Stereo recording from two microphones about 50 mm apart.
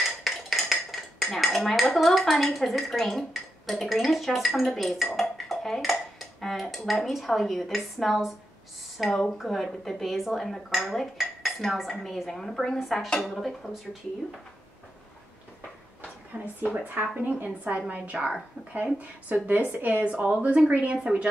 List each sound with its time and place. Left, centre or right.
0.0 s dishes: centre
5.5 s speech: centre
12.7 s speech: centre
16.3 s a woman's voice: right
19.3 s a woman's voice: right